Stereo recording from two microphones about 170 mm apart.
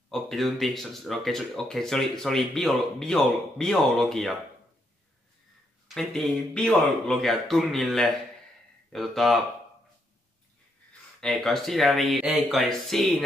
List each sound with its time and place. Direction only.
0.1 s speech: centre (ahead or behind)
5.9 s speech: centre (ahead or behind)
11.1 s speech: 5° left (ahead or behind)